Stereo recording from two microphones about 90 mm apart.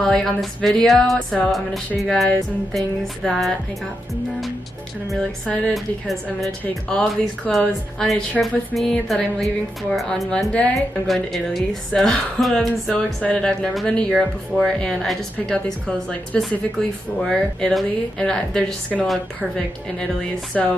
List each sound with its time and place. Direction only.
0.0 s a woman's voice: 5° left (ahead or behind)
3.3 s a woman's voice: 5° left (ahead or behind)
5.5 s speech: 10° left (ahead or behind)
6.9 s a woman's voice: 10° left (ahead or behind)